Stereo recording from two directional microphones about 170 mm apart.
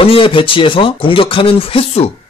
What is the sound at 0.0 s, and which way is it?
Speech, 30° left (ahead or behind).